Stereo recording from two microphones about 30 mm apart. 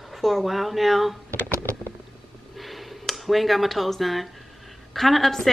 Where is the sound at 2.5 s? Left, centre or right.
Centre.